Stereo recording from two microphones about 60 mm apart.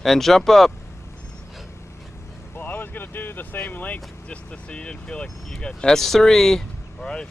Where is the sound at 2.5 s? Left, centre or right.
Left.